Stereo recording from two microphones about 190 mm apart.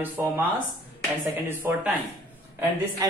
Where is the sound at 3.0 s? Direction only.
20° right (ahead or behind).